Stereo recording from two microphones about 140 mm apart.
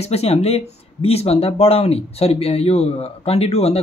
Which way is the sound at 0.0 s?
50° left (ahead or behind).